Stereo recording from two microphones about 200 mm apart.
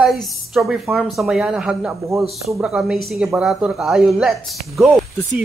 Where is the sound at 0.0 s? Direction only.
Centre (ahead or behind).